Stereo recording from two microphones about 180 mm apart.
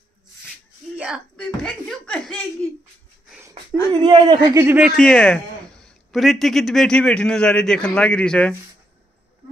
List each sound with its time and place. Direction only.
0.9 s a man's voice: 5° right (ahead or behind)
3.4 s a sound: 20° right (ahead or behind)
4.1 s speech: 25° right (ahead or behind)
4.6 s speech: 5° right (ahead or behind)
5.0 s a man's voice: 5° left (ahead or behind)